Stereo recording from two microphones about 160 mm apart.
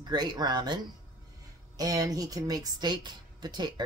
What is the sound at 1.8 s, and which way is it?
Speech, 20° right (ahead or behind).